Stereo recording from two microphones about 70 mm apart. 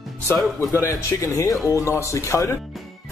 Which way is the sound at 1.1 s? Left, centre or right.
Left.